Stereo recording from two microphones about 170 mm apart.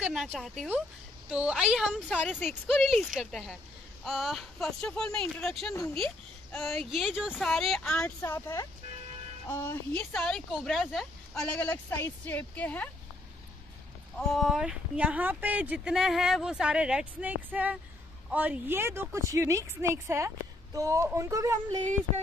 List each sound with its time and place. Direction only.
0.0 s speech: centre (ahead or behind)
2.2 s speech: 10° left (ahead or behind)
8.2 s speech: 15° left (ahead or behind)
14.1 s a woman's voice: centre (ahead or behind); by 21.5 s 20° right (ahead or behind)